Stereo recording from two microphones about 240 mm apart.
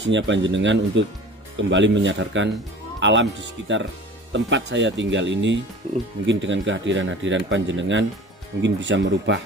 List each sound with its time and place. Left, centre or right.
0.0 s speech: right